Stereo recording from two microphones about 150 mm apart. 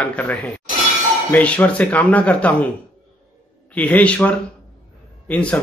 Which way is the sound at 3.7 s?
10° left (ahead or behind).